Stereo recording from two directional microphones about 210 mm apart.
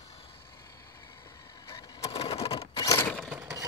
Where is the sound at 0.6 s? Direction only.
15° left (ahead or behind).